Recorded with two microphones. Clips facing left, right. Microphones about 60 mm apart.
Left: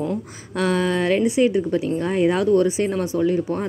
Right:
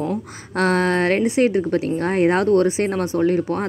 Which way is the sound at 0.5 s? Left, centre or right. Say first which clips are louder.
Right 2 dB; right.